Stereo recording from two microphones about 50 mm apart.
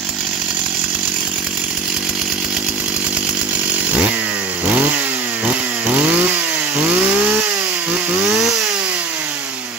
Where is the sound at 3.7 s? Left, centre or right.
Right.